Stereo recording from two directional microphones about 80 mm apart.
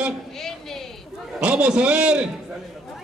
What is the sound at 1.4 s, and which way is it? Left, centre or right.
Speech, centre.